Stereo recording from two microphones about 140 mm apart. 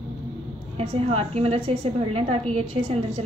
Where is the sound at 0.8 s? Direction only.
45° right (ahead or behind).